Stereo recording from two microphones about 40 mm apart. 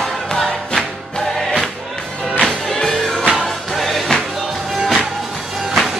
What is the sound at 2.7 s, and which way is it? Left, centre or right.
Music, centre.